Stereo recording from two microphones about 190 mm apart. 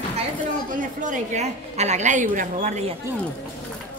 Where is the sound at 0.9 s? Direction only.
40° right (ahead or behind).